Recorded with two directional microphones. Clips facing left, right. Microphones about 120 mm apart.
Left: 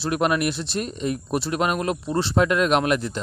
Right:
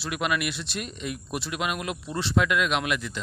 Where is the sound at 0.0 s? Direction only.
40° left (ahead or behind).